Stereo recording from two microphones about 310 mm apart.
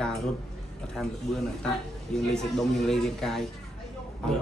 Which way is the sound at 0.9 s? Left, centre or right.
Centre.